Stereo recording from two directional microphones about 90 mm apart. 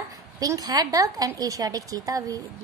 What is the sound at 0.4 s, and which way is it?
A woman's voice, 45° right (ahead or behind).